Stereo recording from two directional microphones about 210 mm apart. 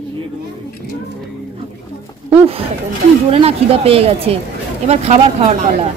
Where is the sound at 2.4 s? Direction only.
25° right (ahead or behind).